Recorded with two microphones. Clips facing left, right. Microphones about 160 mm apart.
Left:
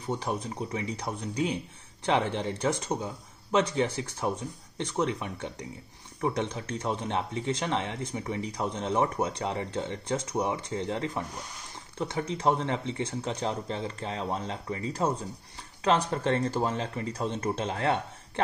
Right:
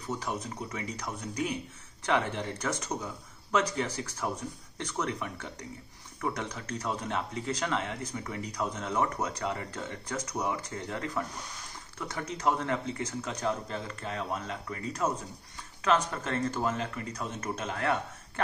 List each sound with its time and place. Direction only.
0.0 s speech: 30° left (ahead or behind)